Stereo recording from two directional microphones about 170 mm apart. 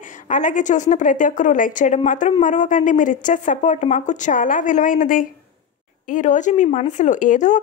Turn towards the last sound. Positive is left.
turn(degrees=45)  # may be behind; listen again after turning